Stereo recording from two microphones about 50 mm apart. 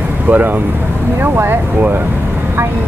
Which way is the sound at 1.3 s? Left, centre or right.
Right.